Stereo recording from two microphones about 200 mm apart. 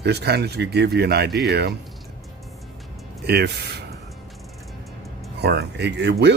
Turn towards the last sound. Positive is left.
turn(degrees=-55)  # may be behind; listen again after turning